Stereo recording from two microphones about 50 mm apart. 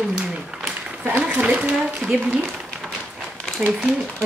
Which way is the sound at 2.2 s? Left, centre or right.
Right.